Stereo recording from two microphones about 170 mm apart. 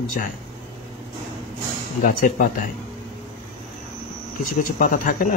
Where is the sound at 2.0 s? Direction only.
55° left (ahead or behind).